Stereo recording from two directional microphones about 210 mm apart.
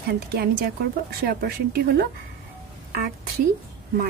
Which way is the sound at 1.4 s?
50° right (ahead or behind).